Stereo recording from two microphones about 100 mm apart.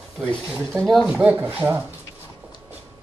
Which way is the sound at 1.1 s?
15° right (ahead or behind).